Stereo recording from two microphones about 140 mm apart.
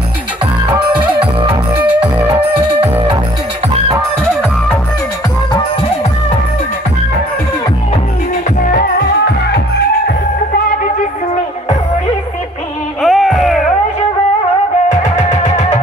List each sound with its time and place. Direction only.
1.9 s music: 10° right (ahead or behind)
8.5 s music: 75° left (ahead or behind)
13.0 s music: 5° right (ahead or behind)
14.9 s music: 55° left (ahead or behind)